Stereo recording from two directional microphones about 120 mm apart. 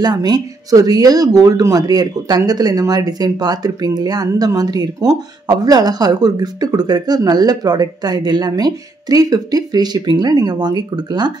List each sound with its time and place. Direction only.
0.0 s speech: 35° right (ahead or behind)